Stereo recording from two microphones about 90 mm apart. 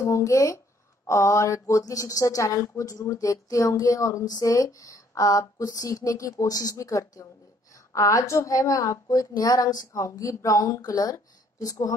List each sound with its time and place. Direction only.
0.0 s speech: 35° left (ahead or behind)